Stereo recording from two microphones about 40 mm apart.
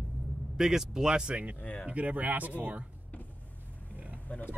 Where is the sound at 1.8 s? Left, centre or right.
Right.